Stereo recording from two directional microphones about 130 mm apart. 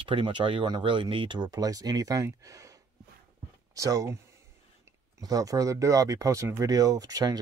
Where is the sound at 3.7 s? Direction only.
25° right (ahead or behind).